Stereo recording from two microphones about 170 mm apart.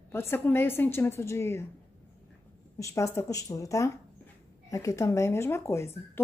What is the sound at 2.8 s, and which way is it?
A woman's voice, 20° left (ahead or behind).